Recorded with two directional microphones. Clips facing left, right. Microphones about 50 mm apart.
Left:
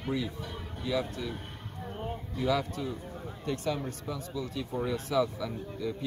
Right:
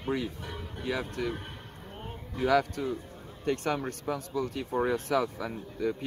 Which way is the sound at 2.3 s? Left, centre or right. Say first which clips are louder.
Right 5 dB; right.